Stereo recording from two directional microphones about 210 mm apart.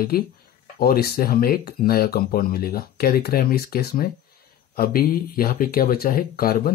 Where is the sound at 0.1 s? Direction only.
45° left (ahead or behind).